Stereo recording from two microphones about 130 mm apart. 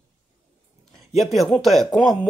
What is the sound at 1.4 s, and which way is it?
Speech, centre (ahead or behind).